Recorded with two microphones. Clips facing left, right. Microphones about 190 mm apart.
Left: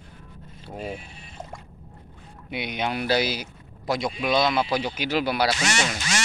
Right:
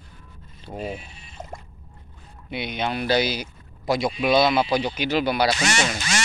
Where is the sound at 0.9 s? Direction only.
55° left (ahead or behind).